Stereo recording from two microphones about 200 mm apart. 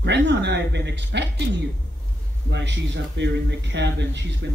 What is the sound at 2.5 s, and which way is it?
Speech, 60° right (ahead or behind).